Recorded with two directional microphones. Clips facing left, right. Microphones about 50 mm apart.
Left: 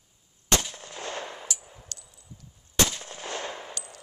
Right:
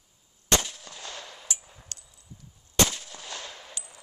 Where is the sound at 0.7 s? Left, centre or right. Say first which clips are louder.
Left 2 dB; left.